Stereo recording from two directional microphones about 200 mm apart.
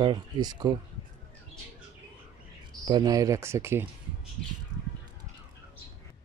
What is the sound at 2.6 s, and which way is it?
Speech, 20° right (ahead or behind).